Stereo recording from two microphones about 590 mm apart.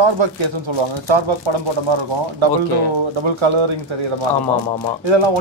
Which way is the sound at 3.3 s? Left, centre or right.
Right.